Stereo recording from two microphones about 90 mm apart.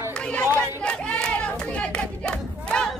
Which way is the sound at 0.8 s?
10° left (ahead or behind).